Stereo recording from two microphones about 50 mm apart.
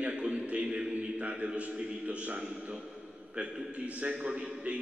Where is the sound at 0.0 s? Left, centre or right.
Right.